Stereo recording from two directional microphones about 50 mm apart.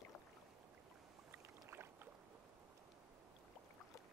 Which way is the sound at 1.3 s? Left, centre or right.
Right.